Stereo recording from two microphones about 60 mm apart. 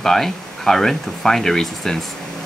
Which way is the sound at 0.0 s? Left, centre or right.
Centre.